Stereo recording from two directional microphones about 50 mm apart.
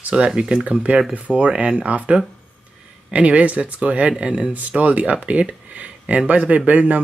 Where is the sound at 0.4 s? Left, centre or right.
Right.